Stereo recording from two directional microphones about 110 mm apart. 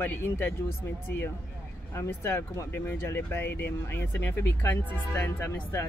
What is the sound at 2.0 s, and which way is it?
Speech, 20° left (ahead or behind).